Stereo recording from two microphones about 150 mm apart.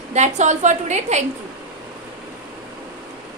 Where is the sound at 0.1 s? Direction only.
50° right (ahead or behind).